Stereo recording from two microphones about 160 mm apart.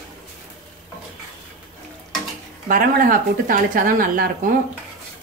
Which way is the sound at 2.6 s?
60° right (ahead or behind).